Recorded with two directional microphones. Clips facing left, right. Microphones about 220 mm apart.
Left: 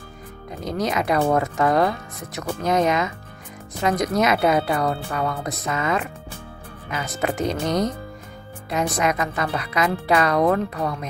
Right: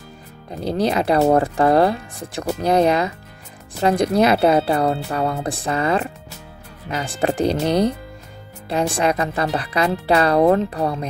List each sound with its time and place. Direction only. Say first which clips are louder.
0.7 s speech: right 4 dB; 30° right (ahead or behind)